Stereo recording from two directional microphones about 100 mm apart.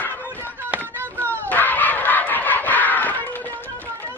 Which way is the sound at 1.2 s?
15° left (ahead or behind).